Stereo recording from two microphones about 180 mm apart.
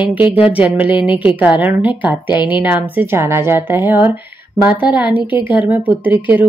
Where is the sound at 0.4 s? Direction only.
10° right (ahead or behind).